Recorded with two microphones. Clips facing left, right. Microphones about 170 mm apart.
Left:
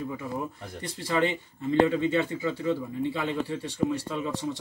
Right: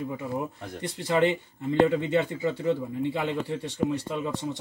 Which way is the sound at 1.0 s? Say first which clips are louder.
Right 3 dB; 15° right (ahead or behind).